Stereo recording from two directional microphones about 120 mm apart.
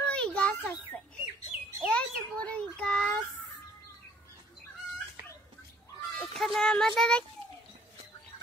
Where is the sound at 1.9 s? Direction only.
10° left (ahead or behind).